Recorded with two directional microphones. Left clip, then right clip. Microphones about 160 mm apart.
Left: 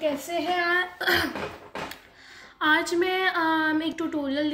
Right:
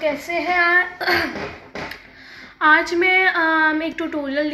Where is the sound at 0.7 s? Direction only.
40° left (ahead or behind).